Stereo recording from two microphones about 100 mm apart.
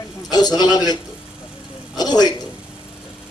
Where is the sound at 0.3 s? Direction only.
40° left (ahead or behind).